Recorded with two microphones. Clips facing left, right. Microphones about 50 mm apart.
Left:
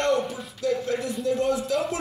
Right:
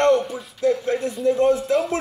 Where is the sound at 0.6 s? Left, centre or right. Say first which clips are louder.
Right 5 dB; right.